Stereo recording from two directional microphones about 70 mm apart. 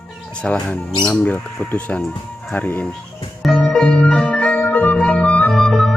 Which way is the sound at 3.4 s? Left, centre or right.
Centre.